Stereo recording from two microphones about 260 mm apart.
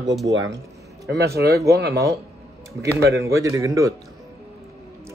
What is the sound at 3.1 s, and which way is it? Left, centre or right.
Speech, centre.